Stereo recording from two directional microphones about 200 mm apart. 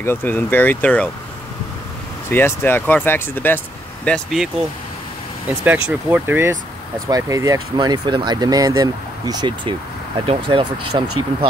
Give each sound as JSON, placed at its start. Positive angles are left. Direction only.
{"t": 0.0, "sound": "speech", "side_deg": 10}
{"t": 2.3, "sound": "speech", "side_deg": 10}
{"t": 5.6, "sound": "speech", "side_deg": -5}